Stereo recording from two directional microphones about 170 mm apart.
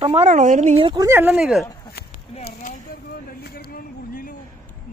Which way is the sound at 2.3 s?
40° left (ahead or behind).